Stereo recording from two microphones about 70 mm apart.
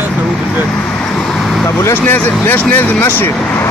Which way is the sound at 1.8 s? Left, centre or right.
Left.